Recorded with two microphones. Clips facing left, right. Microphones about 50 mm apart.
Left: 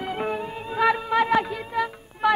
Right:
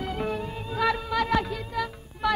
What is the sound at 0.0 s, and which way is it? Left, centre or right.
Music, left.